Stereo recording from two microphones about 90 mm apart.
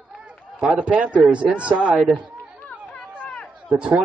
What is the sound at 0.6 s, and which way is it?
A man's voice, 10° right (ahead or behind).